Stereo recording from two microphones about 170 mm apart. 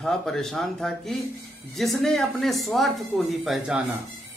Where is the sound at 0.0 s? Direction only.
5° left (ahead or behind).